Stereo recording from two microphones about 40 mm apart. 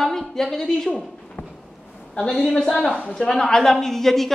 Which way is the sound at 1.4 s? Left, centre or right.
Left.